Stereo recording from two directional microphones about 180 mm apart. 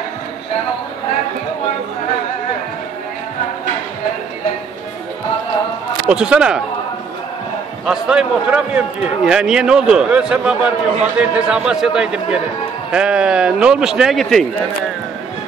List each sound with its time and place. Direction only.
6.0 s a man's voice: 5° right (ahead or behind)
7.8 s a man's voice: 5° right (ahead or behind)